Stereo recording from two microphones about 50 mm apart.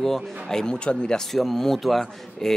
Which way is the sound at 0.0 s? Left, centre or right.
Centre.